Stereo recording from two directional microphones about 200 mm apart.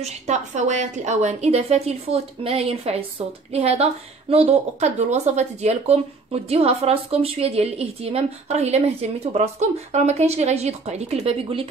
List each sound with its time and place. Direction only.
0.0 s a woman's voice: 35° right (ahead or behind)